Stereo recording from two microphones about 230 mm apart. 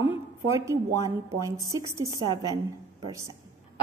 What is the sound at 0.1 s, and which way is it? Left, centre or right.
A woman's voice, centre.